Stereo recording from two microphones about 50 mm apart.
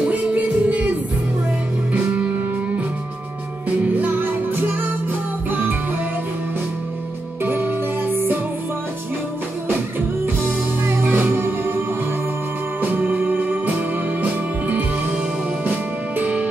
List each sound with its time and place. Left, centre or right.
0.1 s music: right
2.0 s music: right
3.9 s music: right
7.4 s music: right
9.9 s music: right
12.8 s music: right
16.2 s music: right